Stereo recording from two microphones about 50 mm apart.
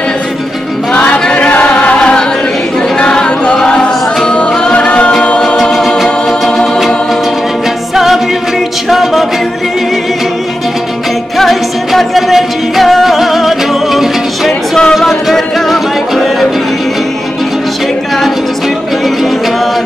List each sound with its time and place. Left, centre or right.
0.9 s music: left
3.0 s a capella: centre
4.3 s music: centre
5.6 s music: centre
7.9 s music: centre
8.8 s a capella: centre
11.3 s music: centre